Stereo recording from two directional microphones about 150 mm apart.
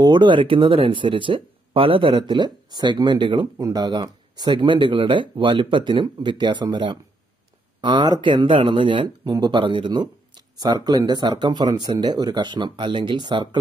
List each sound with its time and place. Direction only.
0.0 s speech: 30° right (ahead or behind)